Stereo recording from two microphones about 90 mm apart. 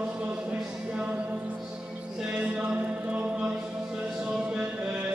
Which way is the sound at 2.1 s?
10° right (ahead or behind).